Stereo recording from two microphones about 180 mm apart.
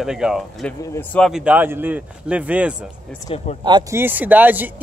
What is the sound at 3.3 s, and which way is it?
Speech, 30° left (ahead or behind).